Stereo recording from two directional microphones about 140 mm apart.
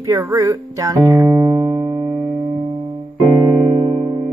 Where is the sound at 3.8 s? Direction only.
35° right (ahead or behind).